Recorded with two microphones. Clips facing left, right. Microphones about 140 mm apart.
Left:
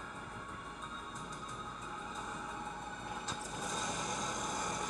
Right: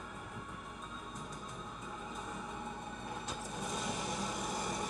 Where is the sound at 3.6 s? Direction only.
25° right (ahead or behind).